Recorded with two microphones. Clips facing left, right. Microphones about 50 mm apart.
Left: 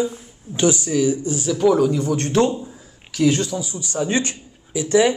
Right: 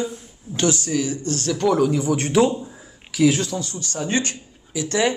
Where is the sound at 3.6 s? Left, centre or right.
Centre.